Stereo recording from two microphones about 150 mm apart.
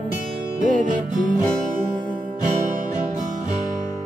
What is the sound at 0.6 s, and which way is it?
Music, 60° right (ahead or behind).